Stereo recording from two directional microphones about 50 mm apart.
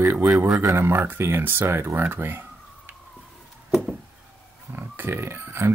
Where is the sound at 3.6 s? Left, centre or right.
Centre.